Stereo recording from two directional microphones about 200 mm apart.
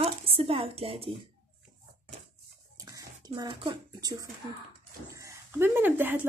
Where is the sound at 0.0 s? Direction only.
30° right (ahead or behind).